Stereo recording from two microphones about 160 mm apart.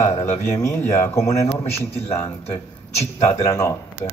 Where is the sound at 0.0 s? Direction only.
15° left (ahead or behind).